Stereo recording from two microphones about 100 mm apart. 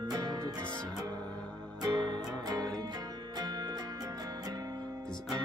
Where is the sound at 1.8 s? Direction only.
45° right (ahead or behind).